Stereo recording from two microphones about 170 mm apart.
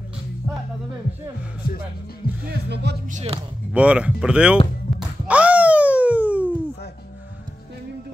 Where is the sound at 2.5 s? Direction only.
80° right.